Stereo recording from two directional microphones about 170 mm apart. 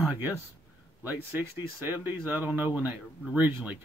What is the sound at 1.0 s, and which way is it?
Speech, 10° right (ahead or behind).